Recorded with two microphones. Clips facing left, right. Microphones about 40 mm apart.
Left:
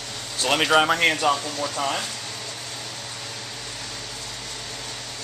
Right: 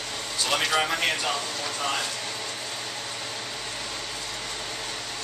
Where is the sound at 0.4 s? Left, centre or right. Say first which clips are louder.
Left 6 dB; left.